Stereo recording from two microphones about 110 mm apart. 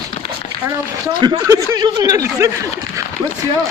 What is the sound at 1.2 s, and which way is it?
Speech, 35° right (ahead or behind).